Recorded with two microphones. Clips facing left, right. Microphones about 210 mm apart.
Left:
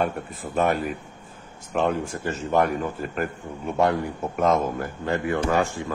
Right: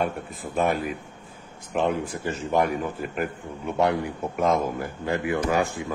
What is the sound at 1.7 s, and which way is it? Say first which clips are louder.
Speech: left 1 dB; 10° right (ahead or behind).